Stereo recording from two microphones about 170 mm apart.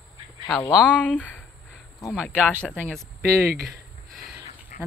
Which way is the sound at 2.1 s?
5° right (ahead or behind).